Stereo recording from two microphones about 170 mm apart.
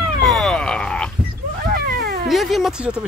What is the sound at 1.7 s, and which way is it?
Cat, 65° right (ahead or behind).